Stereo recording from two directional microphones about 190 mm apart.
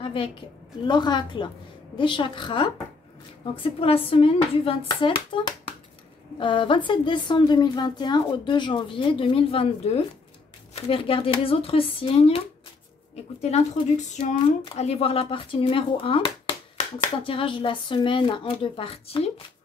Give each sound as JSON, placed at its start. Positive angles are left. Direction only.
{"t": 0.0, "sound": "a sound", "side_deg": 25}
{"t": 0.8, "sound": "speech", "side_deg": 25}
{"t": 6.4, "sound": "speech", "side_deg": 25}